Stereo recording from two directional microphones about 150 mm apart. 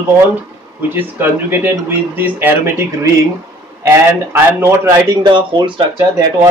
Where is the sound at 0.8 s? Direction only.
15° right (ahead or behind); by 5.7 s 30° right (ahead or behind).